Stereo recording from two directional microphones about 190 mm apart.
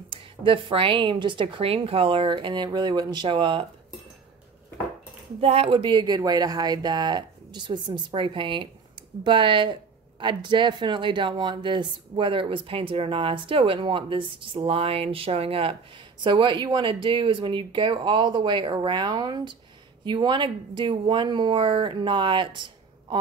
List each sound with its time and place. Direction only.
0.1 s speech: 25° right (ahead or behind)
5.4 s speech: 30° right (ahead or behind)